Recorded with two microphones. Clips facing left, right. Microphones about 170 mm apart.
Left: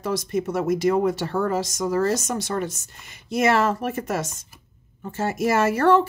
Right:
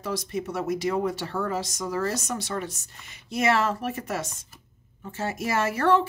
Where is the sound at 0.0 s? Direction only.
45° left (ahead or behind).